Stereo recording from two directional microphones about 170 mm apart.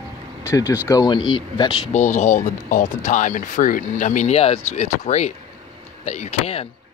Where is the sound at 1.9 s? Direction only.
45° left (ahead or behind).